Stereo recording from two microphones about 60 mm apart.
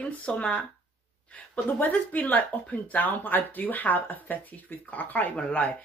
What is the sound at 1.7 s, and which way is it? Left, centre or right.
Speech, left.